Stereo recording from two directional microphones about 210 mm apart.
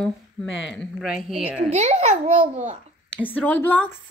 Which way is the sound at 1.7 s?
30° right (ahead or behind).